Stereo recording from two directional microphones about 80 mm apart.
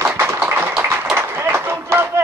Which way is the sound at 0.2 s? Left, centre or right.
Right.